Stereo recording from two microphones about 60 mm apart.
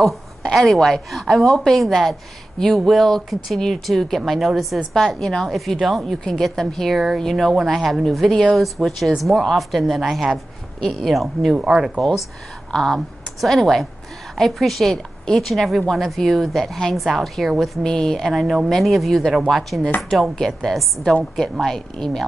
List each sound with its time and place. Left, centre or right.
0.4 s speech: centre
11.5 s speech: centre
12.0 s a woman's voice: centre
17.8 s a woman's voice: centre